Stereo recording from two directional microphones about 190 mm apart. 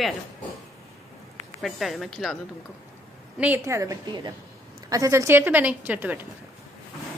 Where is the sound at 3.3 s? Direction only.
10° right (ahead or behind).